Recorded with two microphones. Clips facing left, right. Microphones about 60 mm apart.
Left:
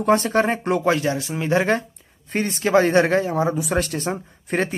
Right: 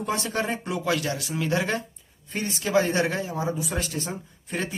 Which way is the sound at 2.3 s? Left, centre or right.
Left.